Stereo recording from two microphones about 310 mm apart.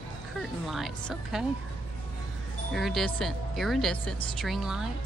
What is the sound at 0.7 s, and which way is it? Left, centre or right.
Speech, centre.